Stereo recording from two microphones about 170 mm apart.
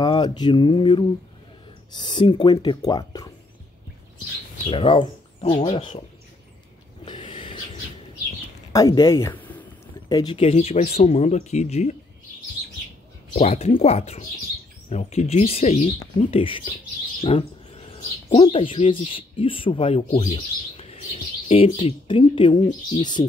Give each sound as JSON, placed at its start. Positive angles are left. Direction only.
{"t": 0.0, "sound": "mantra", "side_deg": 25}
{"t": 2.0, "sound": "speech", "side_deg": 25}
{"t": 4.6, "sound": "speech", "side_deg": 30}
{"t": 7.1, "sound": "owl", "side_deg": 30}
{"t": 8.7, "sound": "speech", "side_deg": 20}
{"t": 10.0, "sound": "speech", "side_deg": 25}
{"t": 13.3, "sound": "speech", "side_deg": 35}